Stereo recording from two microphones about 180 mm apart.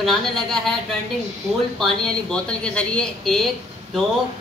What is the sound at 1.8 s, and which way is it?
Speech, 5° left (ahead or behind).